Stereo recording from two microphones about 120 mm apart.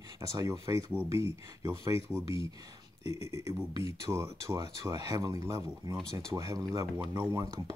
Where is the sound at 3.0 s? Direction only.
25° right (ahead or behind).